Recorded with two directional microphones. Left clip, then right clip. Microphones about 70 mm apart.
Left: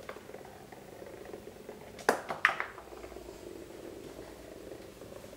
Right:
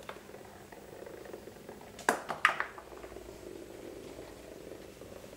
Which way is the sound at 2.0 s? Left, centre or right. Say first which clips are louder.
Even; centre.